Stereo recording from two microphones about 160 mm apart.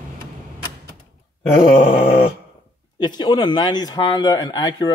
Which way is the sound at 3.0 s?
25° left (ahead or behind).